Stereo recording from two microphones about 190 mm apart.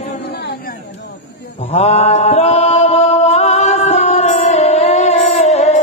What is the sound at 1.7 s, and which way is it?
Mantra, 35° left (ahead or behind).